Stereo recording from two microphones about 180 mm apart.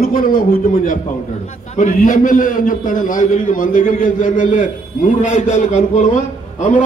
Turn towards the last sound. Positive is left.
turn(degrees=45)  # may be behind; listen again after turning